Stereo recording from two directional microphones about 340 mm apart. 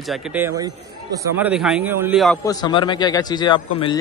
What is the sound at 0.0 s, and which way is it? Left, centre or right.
A man's voice, centre.